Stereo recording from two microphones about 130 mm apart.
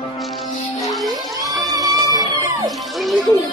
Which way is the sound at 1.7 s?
30° right (ahead or behind).